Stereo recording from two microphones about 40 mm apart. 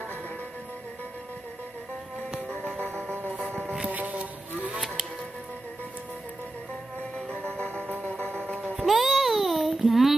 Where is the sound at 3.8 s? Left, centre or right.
Right.